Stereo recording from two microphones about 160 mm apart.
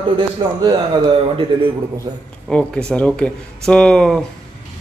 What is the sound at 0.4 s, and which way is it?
A man's voice, 30° right (ahead or behind).